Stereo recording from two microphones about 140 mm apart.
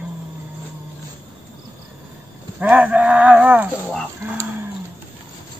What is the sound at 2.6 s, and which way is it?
Livestock, 10° right (ahead or behind).